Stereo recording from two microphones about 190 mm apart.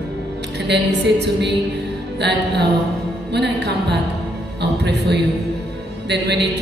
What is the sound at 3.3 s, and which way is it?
A woman's voice, 60° right (ahead or behind).